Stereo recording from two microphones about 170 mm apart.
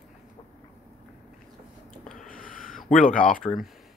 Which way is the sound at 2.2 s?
55° left (ahead or behind).